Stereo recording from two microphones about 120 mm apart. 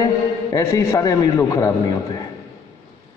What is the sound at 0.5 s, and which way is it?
A man's voice, 20° left (ahead or behind).